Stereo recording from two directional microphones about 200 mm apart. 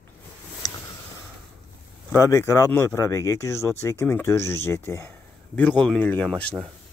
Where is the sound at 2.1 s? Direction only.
15° left (ahead or behind).